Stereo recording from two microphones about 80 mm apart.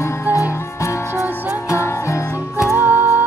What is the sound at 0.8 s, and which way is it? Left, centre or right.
Music, left.